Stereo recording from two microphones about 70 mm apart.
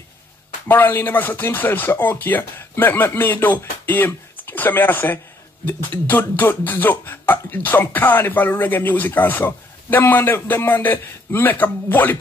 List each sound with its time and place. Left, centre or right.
0.7 s speech: left